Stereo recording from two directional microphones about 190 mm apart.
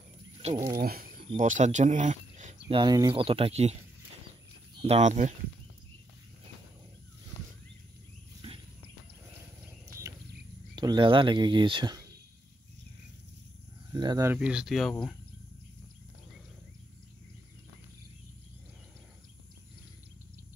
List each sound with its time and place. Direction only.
0.4 s speech: 35° right (ahead or behind)
0.7 s speech: 50° right (ahead or behind)
1.3 s speech: 40° right (ahead or behind)
2.7 s speech: 20° right (ahead or behind)
4.8 s speech: 35° right (ahead or behind)
8.4 s a sound: 30° right (ahead or behind)
10.8 s speech: 25° right (ahead or behind)
13.9 s speech: 20° right (ahead or behind); by 15.1 s centre (ahead or behind)